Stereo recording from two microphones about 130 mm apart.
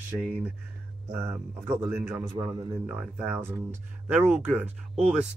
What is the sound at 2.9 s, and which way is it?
Speech, 10° right (ahead or behind).